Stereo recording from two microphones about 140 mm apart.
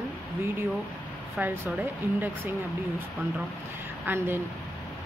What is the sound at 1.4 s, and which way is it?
Speech, 15° right (ahead or behind).